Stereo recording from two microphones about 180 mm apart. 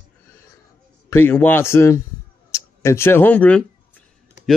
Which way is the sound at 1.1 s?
10° left (ahead or behind).